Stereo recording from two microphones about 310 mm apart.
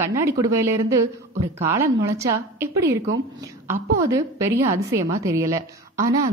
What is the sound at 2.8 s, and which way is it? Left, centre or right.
Speech, right.